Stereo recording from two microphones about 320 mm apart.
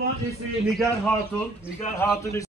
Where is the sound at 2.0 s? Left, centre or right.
Centre.